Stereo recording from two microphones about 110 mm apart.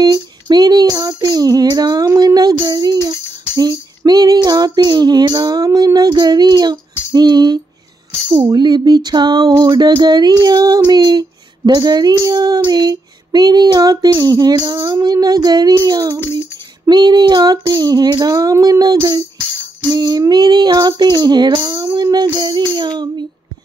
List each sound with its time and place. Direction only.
0.0 s child singing: 40° right (ahead or behind)
3.1 s music: 35° right (ahead or behind)
4.5 s child singing: 35° right (ahead or behind)
7.1 s music: 40° right (ahead or behind)
8.3 s child singing: 40° right (ahead or behind)